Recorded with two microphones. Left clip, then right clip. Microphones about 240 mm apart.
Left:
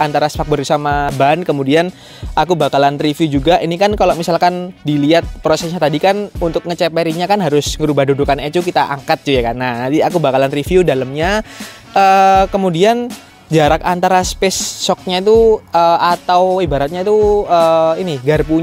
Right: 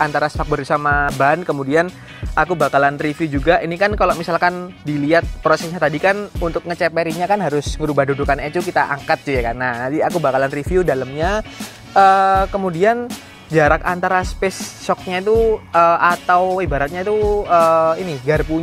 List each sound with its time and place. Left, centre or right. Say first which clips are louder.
0.0 s speech: left 3 dB; left
11.9 s speech: left 3 dB; left